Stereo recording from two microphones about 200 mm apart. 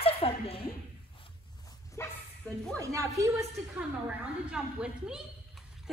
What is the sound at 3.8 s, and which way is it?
A woman's voice, 5° right (ahead or behind).